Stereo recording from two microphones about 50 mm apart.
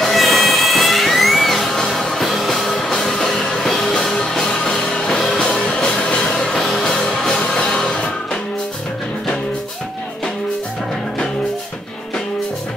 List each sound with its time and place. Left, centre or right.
0.0 s music: centre
6.6 s music: centre